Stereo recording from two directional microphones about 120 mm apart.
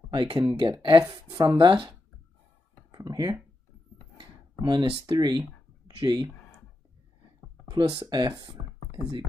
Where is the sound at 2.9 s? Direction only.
30° right (ahead or behind).